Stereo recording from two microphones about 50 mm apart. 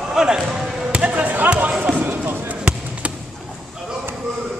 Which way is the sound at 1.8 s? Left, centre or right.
Right.